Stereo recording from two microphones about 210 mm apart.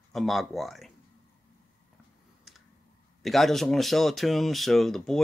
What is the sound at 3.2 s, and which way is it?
Speech, centre (ahead or behind).